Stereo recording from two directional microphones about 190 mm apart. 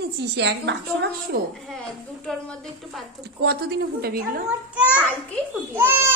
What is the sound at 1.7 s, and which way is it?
A woman's voice, 5° left (ahead or behind).